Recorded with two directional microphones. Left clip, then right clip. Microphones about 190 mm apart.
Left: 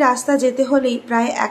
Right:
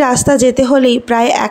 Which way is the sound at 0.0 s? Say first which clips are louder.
Right 5 dB; 40° right (ahead or behind).